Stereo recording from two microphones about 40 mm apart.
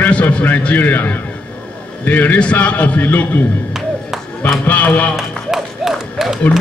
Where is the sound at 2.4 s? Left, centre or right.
Left.